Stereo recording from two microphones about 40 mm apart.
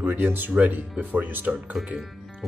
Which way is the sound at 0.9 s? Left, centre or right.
Right.